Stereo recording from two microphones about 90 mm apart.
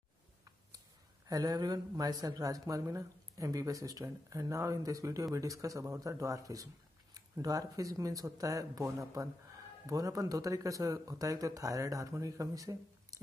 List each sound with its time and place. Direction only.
1.2 s speech: 45° right (ahead or behind)